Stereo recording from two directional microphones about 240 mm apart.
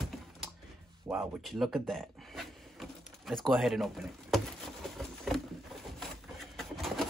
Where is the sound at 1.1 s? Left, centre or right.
Centre.